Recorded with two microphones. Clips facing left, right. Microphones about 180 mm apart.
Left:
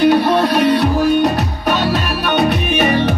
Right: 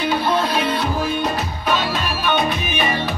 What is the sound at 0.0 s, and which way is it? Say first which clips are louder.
Music: left 8 dB; 65° left (ahead or behind).